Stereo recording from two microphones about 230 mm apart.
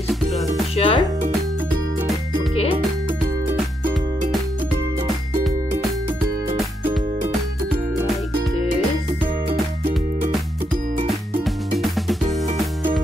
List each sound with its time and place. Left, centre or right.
0.7 s music: left
11.4 s music: centre